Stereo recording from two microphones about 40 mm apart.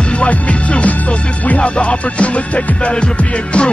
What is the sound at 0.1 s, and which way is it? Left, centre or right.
Music, left.